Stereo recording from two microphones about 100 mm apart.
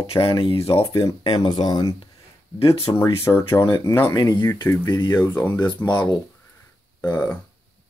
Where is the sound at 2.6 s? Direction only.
65° left (ahead or behind).